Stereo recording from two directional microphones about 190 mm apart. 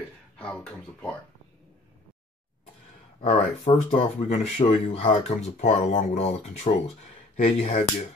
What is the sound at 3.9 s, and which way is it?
Speech, 40° left (ahead or behind).